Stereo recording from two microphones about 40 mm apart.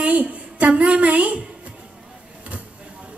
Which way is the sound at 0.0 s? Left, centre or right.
Right.